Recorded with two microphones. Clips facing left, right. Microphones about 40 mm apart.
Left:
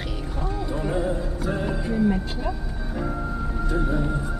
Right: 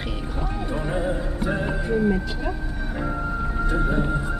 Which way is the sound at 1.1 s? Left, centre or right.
Right.